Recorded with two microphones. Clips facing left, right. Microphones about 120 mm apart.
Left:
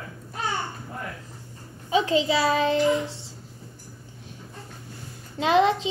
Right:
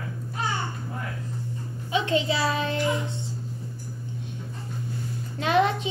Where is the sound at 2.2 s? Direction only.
25° left (ahead or behind).